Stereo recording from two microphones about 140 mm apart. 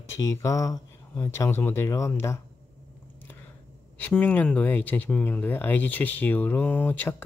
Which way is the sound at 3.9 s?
10° left (ahead or behind).